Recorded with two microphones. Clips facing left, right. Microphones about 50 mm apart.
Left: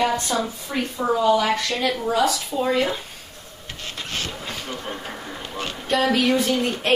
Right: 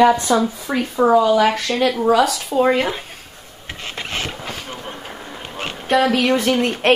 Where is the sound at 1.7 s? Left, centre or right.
Right.